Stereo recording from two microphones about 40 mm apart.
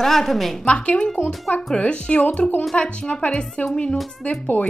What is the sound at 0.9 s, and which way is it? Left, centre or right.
A woman's voice, centre.